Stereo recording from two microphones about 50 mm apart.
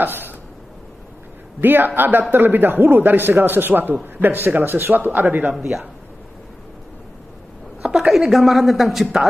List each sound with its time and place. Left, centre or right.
0.0 s speech: right
1.6 s a man's voice: right
4.9 s speech: right
5.6 s a woman's voice: centre
7.8 s a woman's voice: centre